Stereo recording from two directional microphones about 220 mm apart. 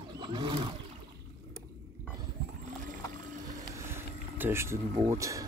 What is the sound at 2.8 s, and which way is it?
Whale vocalization, 35° right (ahead or behind).